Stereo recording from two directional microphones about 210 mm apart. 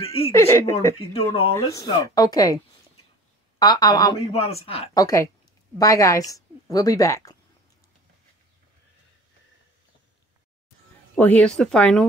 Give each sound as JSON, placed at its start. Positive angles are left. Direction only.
{"t": 0.0, "sound": "speech", "side_deg": 25}
{"t": 0.3, "sound": "a woman's voice", "side_deg": 15}
{"t": 0.9, "sound": "speech", "side_deg": 25}
{"t": 1.5, "sound": "a woman's voice", "side_deg": 15}
{"t": 4.9, "sound": "a woman's voice", "side_deg": 15}
{"t": 11.4, "sound": "a woman's voice", "side_deg": 5}